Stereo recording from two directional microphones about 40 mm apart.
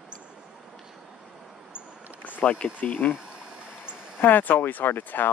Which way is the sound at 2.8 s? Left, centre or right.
Left.